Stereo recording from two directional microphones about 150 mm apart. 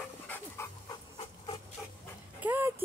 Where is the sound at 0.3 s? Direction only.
15° left (ahead or behind).